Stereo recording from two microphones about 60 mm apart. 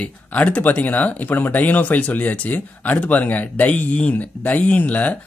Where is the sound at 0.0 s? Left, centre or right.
Left.